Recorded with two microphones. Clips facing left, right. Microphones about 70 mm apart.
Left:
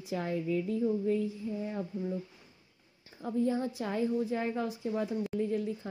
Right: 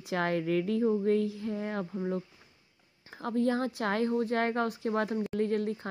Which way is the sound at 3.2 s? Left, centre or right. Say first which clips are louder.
Right 2 dB; right.